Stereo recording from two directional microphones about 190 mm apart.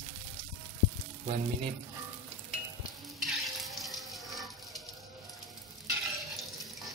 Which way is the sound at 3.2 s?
Centre (ahead or behind).